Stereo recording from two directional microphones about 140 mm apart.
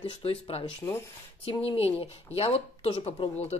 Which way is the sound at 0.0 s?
40° left (ahead or behind).